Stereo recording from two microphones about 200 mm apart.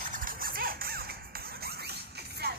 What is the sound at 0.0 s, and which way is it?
Music, 45° right (ahead or behind).